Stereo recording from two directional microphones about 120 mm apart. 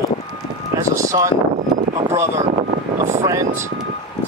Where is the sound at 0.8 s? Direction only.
25° right (ahead or behind).